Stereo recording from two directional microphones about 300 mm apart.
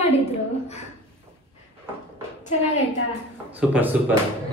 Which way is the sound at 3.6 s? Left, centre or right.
Centre.